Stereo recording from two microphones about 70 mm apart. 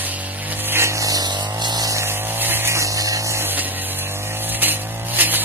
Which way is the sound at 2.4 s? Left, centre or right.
Right.